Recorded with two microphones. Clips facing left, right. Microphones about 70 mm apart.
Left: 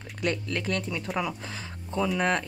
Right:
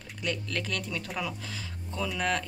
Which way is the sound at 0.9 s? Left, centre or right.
Centre.